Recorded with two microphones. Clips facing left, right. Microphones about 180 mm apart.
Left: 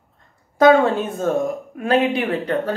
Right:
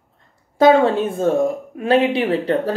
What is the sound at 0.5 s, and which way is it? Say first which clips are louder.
A woman's voice: right 1 dB; 30° right (ahead or behind).